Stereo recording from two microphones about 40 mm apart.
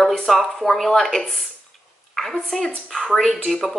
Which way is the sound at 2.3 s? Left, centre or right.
Centre.